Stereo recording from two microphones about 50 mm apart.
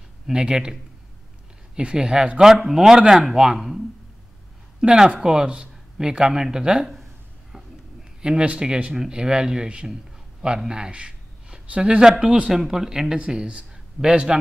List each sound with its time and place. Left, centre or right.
0.3 s speech: centre
1.8 s speech: centre
2.4 s speech: centre
4.8 s speech: centre
8.2 s speech: centre